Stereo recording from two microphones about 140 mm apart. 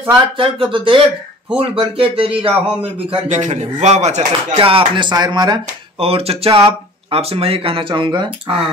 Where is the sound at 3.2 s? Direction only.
60° right (ahead or behind).